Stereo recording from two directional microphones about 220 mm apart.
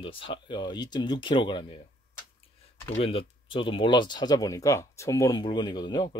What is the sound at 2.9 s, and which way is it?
Speech, 25° left (ahead or behind).